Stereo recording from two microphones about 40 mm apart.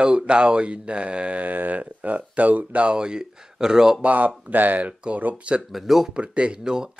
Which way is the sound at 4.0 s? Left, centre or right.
Right.